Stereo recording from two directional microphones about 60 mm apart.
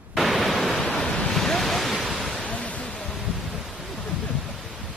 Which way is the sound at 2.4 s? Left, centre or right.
Left.